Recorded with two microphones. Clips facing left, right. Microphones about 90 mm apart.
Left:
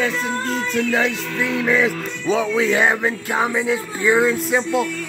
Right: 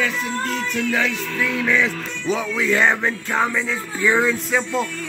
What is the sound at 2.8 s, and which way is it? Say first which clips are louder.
Music: left 1 dB; 10° left (ahead or behind).